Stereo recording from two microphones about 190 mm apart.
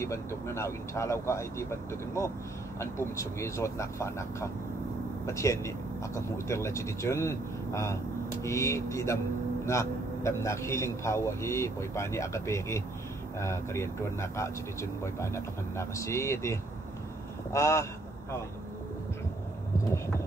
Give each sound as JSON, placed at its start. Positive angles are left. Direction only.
{"t": 0.0, "sound": "speech", "side_deg": 15}